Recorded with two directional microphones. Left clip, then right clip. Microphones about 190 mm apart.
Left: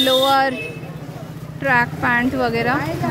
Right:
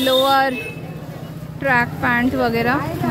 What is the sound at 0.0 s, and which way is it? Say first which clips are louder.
Speech: even; 5° left (ahead or behind).